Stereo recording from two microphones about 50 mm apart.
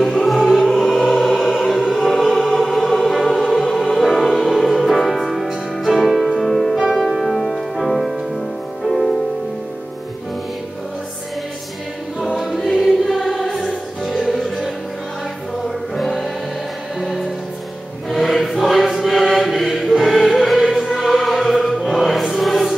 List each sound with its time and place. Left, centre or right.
0.0 s music: centre
6.8 s music: centre
12.4 s choir: centre
13.1 s music: centre
16.0 s music: centre
18.1 s choir: centre